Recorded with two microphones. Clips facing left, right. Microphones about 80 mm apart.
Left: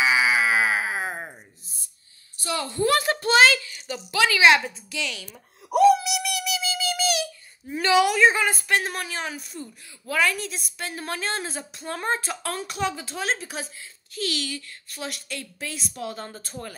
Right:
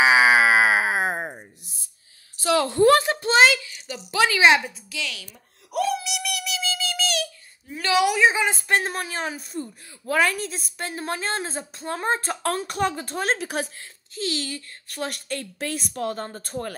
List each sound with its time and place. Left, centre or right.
0.0 s a sound: right
1.1 s a sound: right
2.4 s a woman's voice: right
3.0 s a sound: right
3.5 s a sound: centre
4.1 s speech: right
4.6 s a woman's voice: centre
6.0 s music: centre
7.9 s a woman's voice: centre
8.5 s a woman's voice: right
12.2 s a woman's voice: right
14.1 s speech: right
14.9 s a woman's voice: right